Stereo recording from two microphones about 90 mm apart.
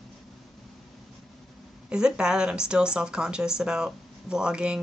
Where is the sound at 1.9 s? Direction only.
10° right (ahead or behind).